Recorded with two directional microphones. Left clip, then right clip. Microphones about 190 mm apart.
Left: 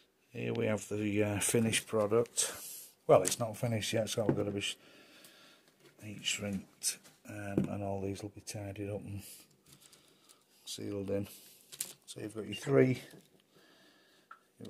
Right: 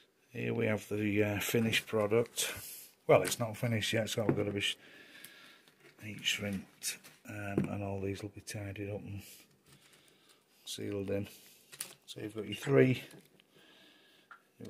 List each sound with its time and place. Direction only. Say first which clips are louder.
0.3 s speech: even; centre (ahead or behind)
4.4 s a sound: right 2 dB; 5° right (ahead or behind)
7.7 s speech: left 1 dB; 5° right (ahead or behind)
10.6 s speech: right 1 dB; 5° right (ahead or behind)